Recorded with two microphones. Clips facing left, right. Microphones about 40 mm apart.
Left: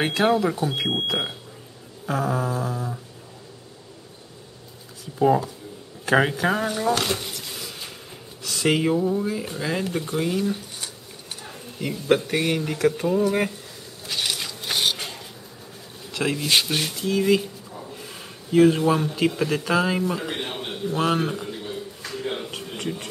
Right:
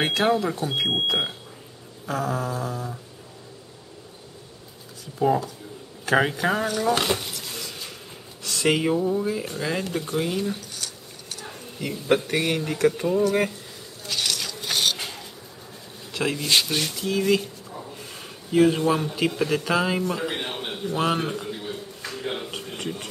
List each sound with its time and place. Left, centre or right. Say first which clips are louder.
0.0 s speech: left 1 dB; centre
5.2 s speech: left 2 dB; centre
6.9 s speech: right 1 dB; centre
7.2 s a sound: even; centre
8.5 s speech: left 1 dB; centre
10.8 s a sound: even; left
11.4 s speech: left 2 dB; centre
14.0 s a sound: even; centre
16.1 s speech: left 1 dB; centre